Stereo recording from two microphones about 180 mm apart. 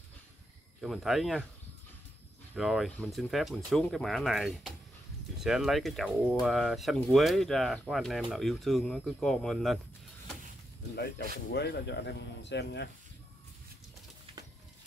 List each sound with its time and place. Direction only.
0.7 s speech: centre (ahead or behind)
2.5 s speech: centre (ahead or behind)
11.5 s speech: 70° left (ahead or behind)